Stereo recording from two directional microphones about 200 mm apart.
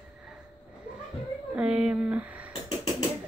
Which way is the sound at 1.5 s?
5° right (ahead or behind).